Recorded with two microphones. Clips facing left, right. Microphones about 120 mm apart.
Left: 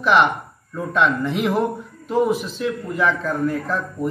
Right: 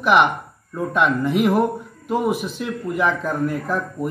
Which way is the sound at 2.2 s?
70° right (ahead or behind).